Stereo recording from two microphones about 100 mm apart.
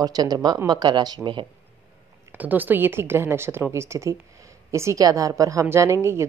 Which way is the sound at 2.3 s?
15° right (ahead or behind).